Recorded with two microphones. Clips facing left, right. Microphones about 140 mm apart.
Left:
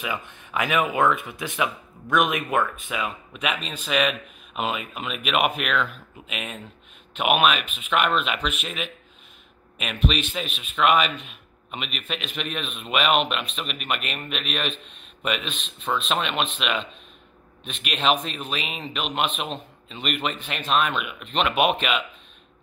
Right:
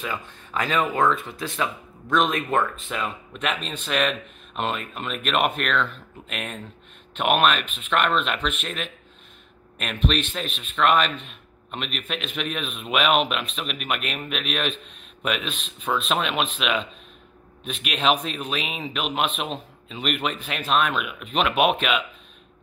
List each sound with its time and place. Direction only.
0.0 s a man's voice: 20° left (ahead or behind); by 22.0 s centre (ahead or behind)